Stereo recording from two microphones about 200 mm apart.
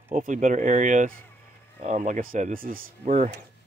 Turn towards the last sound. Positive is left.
turn(degrees=-35)  # may be behind; listen again after turning